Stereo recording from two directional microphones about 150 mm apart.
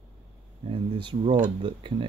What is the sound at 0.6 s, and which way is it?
Speech, 35° right (ahead or behind).